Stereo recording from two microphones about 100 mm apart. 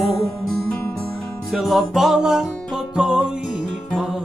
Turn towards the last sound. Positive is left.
turn(degrees=-5)  # may be behind; listen again after turning